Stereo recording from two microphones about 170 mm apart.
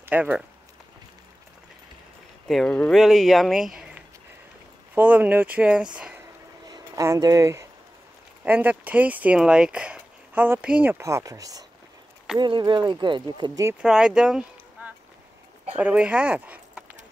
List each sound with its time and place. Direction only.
0.0 s speech: 10° right (ahead or behind)
2.4 s speech: 5° left (ahead or behind)
5.9 s a sound: 5° right (ahead or behind)
6.7 s speech: 20° right (ahead or behind)
13.7 s speech: 5° right (ahead or behind)